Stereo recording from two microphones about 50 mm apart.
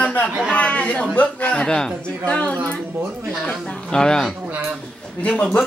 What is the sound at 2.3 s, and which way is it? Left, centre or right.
Speech, left.